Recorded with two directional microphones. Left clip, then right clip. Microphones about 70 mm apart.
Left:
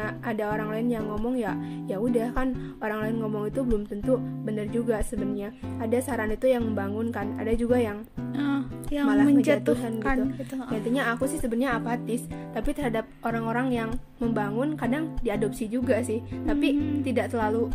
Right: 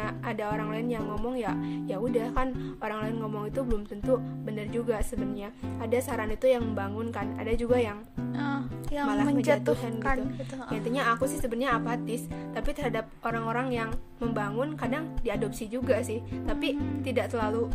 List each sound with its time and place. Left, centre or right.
0.0 s a woman's voice: right
8.3 s music: centre
9.0 s a woman's voice: right
9.3 s a woman's voice: centre
10.7 s a woman's voice: right